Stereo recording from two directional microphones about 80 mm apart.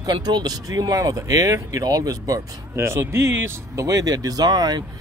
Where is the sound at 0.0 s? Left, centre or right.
Right.